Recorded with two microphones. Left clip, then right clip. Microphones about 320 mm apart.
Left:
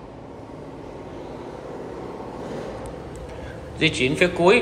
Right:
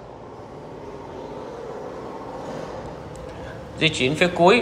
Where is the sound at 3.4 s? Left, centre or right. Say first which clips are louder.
Even; centre.